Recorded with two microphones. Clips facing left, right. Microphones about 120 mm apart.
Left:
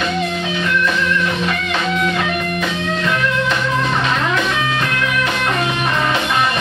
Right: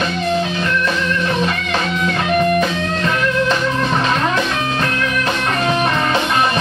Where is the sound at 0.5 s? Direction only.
35° right (ahead or behind).